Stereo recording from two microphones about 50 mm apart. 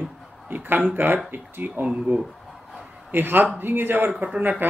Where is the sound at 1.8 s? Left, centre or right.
Right.